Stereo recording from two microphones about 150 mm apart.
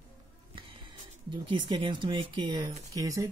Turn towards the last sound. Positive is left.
turn(degrees=-20)  # may be behind; listen again after turning